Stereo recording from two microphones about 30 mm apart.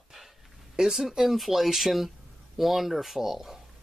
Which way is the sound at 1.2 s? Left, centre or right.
Centre.